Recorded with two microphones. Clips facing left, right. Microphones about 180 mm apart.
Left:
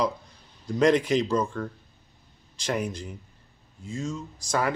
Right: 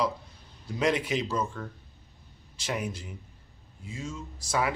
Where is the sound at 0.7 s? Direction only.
5° right (ahead or behind).